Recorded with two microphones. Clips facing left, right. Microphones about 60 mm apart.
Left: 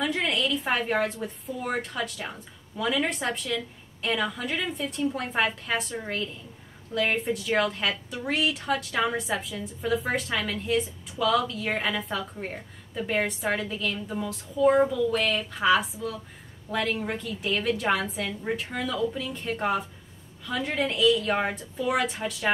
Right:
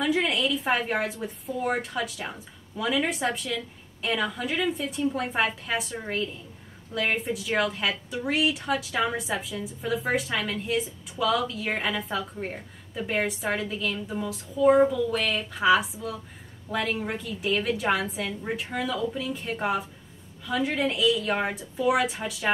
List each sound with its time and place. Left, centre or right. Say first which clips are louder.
0.0 s a woman's voice: right 2 dB; centre